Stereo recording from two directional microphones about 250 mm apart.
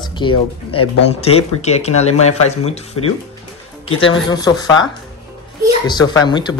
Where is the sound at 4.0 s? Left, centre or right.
Centre.